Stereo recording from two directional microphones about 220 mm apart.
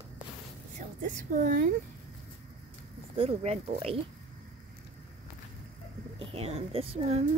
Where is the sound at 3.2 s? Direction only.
25° right (ahead or behind).